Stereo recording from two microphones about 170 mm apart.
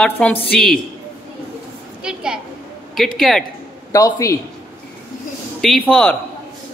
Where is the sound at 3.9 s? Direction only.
20° left (ahead or behind).